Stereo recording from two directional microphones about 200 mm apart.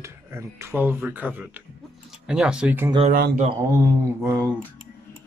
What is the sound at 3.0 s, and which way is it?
Speech, 45° right (ahead or behind).